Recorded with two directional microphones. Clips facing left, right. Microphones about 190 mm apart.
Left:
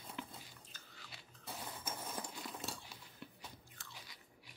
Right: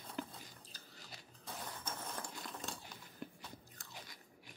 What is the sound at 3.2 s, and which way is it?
Biting, 45° right (ahead or behind).